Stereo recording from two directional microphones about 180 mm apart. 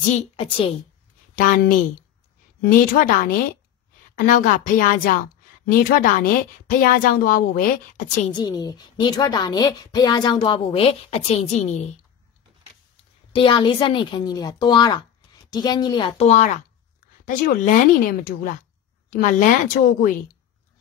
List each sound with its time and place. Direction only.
1.3 s speech: 50° left (ahead or behind)
2.9 s speech: 50° left (ahead or behind)
8.3 s a woman's voice: 25° left (ahead or behind)
13.3 s a woman's voice: 25° left (ahead or behind)
16.3 s speech: 40° left (ahead or behind)